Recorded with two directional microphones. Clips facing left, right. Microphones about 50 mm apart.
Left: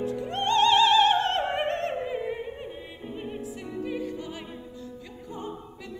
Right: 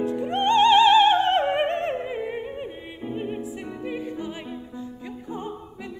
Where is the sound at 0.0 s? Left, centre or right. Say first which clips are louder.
Right 5 dB; right.